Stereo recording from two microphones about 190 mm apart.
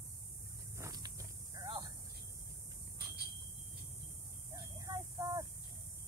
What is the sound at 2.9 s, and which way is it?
Smoke detector, 55° right (ahead or behind).